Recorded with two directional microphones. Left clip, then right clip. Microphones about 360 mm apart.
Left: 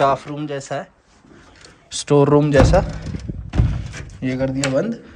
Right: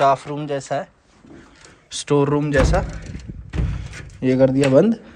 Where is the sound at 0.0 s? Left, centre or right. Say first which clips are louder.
Right 1 dB; centre.